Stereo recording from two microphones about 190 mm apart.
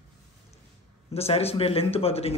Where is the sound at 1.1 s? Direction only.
30° left (ahead or behind).